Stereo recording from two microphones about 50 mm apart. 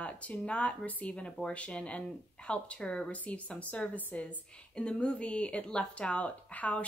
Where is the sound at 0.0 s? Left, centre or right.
Left.